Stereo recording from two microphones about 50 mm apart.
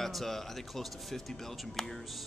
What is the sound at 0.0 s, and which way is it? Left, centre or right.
Speech, centre.